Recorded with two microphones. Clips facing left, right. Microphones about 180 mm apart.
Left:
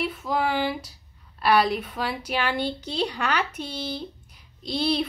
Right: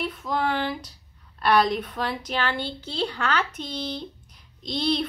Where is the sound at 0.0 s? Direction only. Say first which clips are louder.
Left 1 dB; 5° left (ahead or behind).